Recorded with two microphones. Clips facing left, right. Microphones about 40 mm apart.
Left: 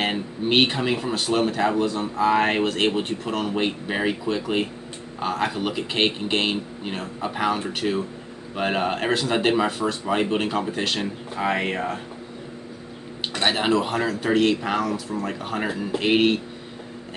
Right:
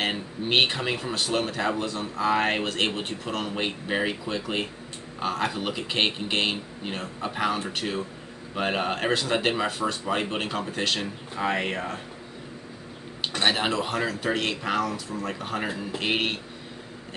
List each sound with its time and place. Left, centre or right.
0.0 s speech: centre
13.4 s speech: centre